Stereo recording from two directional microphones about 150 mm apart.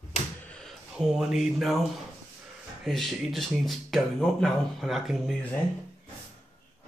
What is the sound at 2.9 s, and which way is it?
Speech, centre (ahead or behind).